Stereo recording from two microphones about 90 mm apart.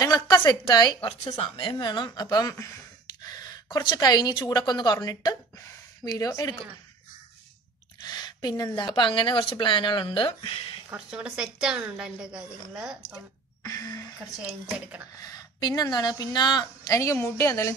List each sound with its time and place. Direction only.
0.0 s a sound: 45° left (ahead or behind)
0.5 s a woman's voice: 50° left (ahead or behind)
1.0 s a woman's voice: 80° left; by 2.5 s 50° left (ahead or behind)
3.2 s gasp: 45° left (ahead or behind)
3.9 s a woman's voice: 50° left (ahead or behind)
8.0 s a sound: 50° left (ahead or behind)
8.7 s speech: 60° left (ahead or behind); by 10.8 s 90° left
11.1 s a woman's voice: 10° right (ahead or behind)
13.6 s a sound: 40° left (ahead or behind)
14.4 s a woman's voice: 15° right (ahead or behind)
15.1 s a woman's voice: 45° left (ahead or behind)
16.9 s a woman's voice: 35° left (ahead or behind)